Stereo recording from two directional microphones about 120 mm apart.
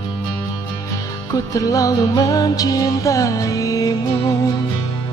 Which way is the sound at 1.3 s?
30° left (ahead or behind).